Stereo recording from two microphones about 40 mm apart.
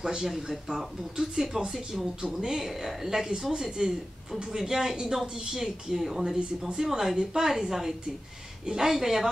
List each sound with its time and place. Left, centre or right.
0.0 s a woman's voice: centre